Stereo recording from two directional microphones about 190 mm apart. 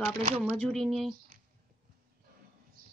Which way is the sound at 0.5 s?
5° left (ahead or behind).